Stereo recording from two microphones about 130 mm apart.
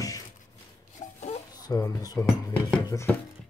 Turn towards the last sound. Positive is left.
turn(degrees=20)  # may be behind; listen again after turning